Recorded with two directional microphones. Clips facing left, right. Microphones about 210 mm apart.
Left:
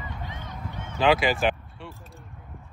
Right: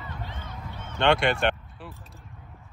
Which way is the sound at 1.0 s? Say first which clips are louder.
Left 1 dB; centre (ahead or behind).